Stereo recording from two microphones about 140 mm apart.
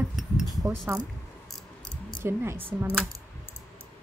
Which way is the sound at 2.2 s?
15° right (ahead or behind).